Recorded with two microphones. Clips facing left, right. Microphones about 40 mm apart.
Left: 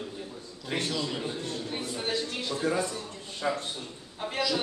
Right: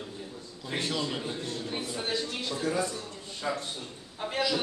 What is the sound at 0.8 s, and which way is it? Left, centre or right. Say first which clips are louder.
Speech: right 2 dB; centre.